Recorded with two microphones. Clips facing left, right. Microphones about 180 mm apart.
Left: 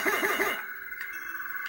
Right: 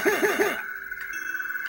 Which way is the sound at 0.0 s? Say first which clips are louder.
Right 8 dB; 75° right (ahead or behind).